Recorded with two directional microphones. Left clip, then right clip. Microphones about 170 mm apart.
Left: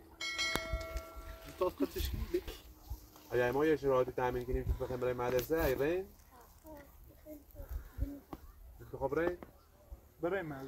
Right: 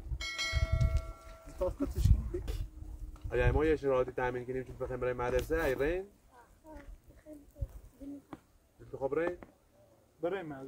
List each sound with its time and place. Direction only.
0.2 s church bell: centre (ahead or behind)
1.6 s speech: 90° right
3.3 s speech: 20° right (ahead or behind)
5.8 s speech: 20° right (ahead or behind)
8.9 s speech: 35° right (ahead or behind)
10.2 s a man's voice: 50° right (ahead or behind)